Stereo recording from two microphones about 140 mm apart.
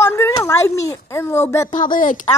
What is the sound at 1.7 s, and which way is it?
Speech, 75° left (ahead or behind).